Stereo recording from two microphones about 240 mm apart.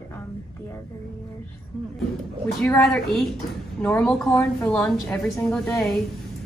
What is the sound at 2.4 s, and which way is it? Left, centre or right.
A woman's voice, centre.